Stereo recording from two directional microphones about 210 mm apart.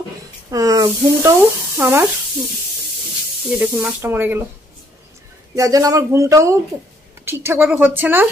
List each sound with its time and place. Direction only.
0.5 s speech: 15° right (ahead or behind)
3.4 s speech: 5° right (ahead or behind)
5.6 s speech: 15° right (ahead or behind)